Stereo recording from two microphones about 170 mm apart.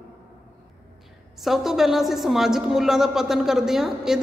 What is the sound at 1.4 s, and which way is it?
A woman's voice, centre (ahead or behind).